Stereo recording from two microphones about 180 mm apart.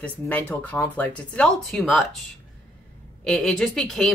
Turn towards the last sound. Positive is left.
turn(degrees=0)  # may be behind; listen again after turning